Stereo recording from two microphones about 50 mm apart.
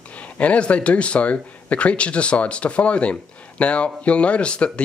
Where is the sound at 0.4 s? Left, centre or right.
Left.